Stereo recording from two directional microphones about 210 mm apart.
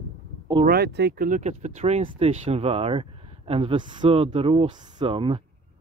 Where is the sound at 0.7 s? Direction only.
50° right (ahead or behind); by 5.4 s 25° right (ahead or behind).